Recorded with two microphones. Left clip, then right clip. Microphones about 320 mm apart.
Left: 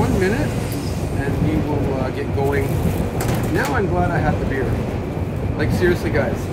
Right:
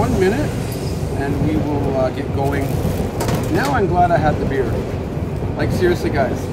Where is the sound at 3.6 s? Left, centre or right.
Centre.